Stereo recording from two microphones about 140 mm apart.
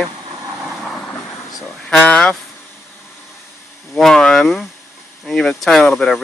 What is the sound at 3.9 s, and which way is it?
Speech, 5° left (ahead or behind).